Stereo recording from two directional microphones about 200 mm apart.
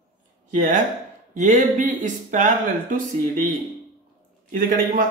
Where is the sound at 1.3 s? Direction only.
40° right (ahead or behind).